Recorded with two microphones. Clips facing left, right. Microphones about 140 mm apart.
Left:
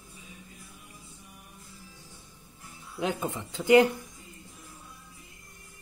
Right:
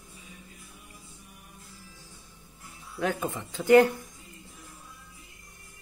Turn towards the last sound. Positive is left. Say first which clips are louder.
# right 1 dB
turn(degrees=15)  # may be behind; listen again after turning